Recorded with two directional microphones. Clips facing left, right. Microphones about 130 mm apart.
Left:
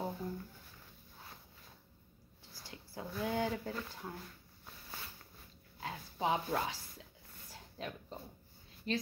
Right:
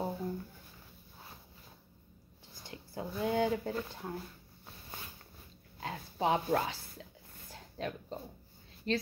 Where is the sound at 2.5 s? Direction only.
20° right (ahead or behind).